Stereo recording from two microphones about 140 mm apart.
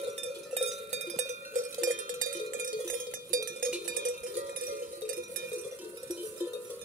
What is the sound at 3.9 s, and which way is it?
Cowbell, 85° right.